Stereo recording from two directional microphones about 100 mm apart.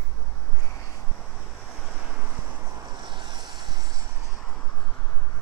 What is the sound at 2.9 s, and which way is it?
Vehicle, 50° right (ahead or behind).